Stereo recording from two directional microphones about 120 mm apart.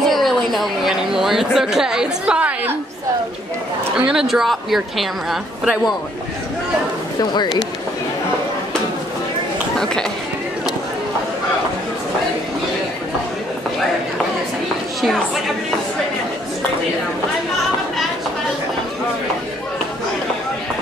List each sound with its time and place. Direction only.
0.0 s a woman's voice: centre (ahead or behind)
4.1 s a woman's voice: 5° right (ahead or behind)
7.2 s speech: 35° left (ahead or behind)
9.8 s speech: 5° left (ahead or behind)
15.0 s a sound: centre (ahead or behind)